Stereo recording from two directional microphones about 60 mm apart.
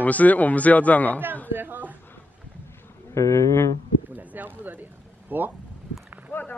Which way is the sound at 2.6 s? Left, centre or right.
Left.